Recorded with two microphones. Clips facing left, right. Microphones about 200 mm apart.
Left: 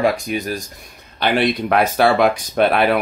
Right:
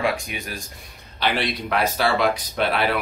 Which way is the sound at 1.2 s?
55° left (ahead or behind).